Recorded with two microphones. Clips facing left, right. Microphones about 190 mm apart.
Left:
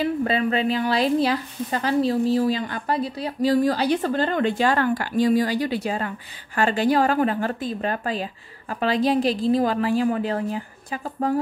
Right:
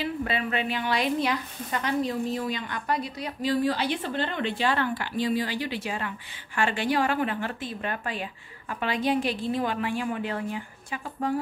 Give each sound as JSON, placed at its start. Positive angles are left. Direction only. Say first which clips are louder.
{"t": 0.0, "sound": "a woman's voice", "louder": "left 7 dB", "side_deg": 40}